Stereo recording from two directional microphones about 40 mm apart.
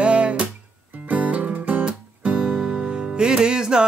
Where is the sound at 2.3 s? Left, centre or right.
Centre.